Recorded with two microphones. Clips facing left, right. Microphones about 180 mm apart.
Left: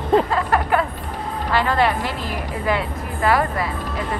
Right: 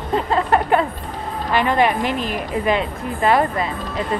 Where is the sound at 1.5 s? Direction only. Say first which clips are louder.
Right 2 dB; 20° right (ahead or behind).